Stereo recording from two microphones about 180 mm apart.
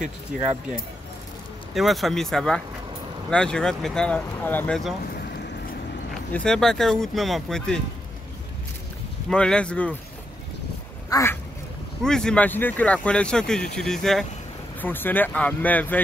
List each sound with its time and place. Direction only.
0.3 s speech: 50° right (ahead or behind)
1.7 s speech: centre (ahead or behind)
6.3 s speech: 5° left (ahead or behind)
9.3 s speech: 5° left (ahead or behind)
11.1 s speech: 15° left (ahead or behind)
12.0 s speech: 5° left (ahead or behind)